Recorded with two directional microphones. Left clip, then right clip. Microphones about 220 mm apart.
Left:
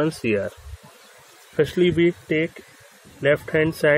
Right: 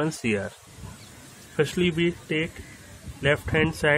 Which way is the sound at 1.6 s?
5° left (ahead or behind).